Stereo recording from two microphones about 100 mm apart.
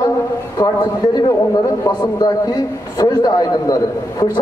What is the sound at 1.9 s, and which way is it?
A man's voice, 40° left (ahead or behind).